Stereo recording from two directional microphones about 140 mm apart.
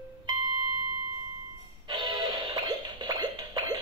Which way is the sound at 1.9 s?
35° right (ahead or behind).